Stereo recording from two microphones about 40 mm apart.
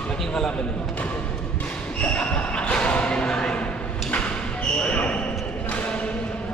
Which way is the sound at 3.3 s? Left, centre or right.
Left.